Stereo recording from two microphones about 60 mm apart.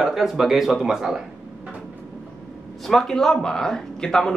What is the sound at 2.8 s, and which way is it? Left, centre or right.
Speech, centre.